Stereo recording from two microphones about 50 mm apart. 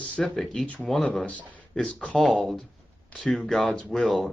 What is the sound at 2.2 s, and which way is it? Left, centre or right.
Speech, centre.